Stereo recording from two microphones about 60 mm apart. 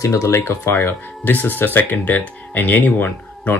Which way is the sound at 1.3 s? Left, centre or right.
Left.